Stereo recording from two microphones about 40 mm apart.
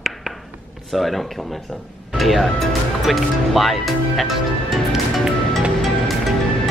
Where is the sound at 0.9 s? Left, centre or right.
Centre.